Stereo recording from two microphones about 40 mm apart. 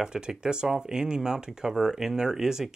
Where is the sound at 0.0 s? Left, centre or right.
Centre.